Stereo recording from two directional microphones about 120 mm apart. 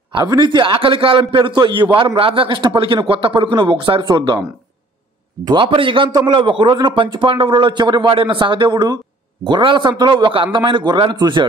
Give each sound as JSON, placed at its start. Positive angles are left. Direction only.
{"t": 0.1, "sound": "speech", "side_deg": -35}
{"t": 5.4, "sound": "a man's voice", "side_deg": -35}
{"t": 5.7, "sound": "a man's voice", "side_deg": -45}